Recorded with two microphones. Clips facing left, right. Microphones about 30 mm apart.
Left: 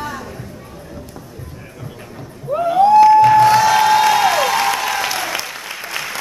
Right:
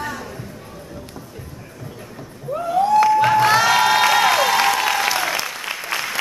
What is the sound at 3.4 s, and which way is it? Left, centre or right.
Music, centre.